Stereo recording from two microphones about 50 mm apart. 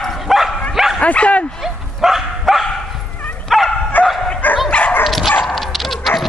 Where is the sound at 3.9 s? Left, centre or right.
Left.